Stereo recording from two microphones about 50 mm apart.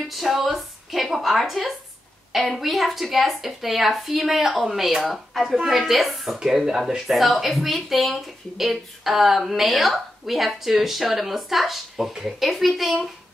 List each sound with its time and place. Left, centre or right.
0.1 s speech: centre